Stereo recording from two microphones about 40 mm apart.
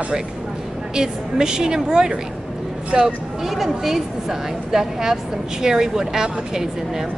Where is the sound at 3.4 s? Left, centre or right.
Centre.